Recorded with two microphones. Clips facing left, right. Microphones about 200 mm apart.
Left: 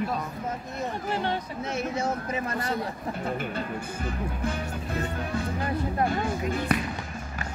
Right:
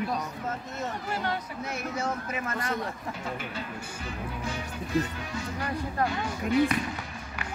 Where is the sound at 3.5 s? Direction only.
50° left (ahead or behind).